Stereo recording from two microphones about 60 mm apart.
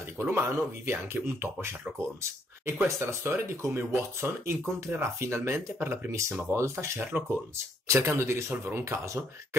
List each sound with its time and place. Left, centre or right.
0.2 s speech: right
3.0 s speech: right
7.9 s speech: right
8.8 s speech: right